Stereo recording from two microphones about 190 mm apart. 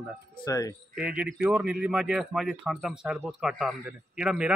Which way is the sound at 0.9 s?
5° right (ahead or behind).